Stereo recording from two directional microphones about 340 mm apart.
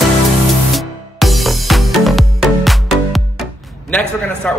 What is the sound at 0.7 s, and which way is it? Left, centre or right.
Music, centre.